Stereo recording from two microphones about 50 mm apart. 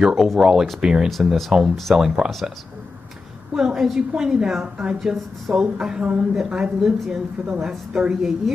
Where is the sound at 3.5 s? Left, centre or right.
Centre.